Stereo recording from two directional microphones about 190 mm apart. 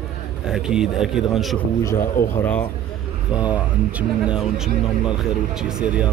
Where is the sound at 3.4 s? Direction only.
5° right (ahead or behind).